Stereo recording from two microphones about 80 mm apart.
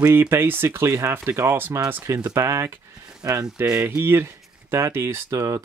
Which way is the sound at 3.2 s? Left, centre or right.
Right.